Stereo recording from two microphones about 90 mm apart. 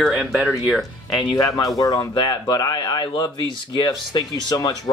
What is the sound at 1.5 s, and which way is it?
Speech, 40° left (ahead or behind).